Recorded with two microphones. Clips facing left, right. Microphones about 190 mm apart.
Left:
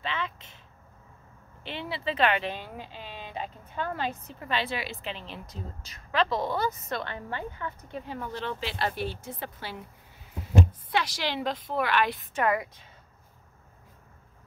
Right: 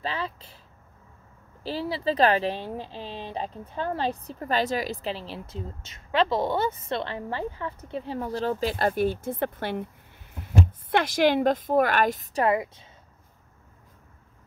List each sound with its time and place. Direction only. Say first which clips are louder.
0.0 s speech: right 2 dB; 35° right (ahead or behind)
1.6 s speech: right 6 dB; 35° right (ahead or behind)